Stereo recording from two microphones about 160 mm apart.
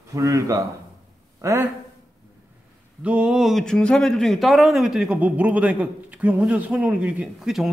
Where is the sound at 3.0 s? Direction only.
5° right (ahead or behind).